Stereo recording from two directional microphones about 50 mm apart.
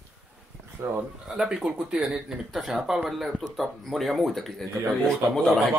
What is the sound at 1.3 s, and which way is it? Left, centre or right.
Speech, centre.